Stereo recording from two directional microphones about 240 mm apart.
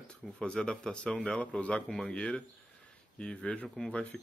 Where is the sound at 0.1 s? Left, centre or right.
Centre.